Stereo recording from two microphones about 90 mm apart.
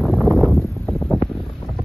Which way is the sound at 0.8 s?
10° left (ahead or behind).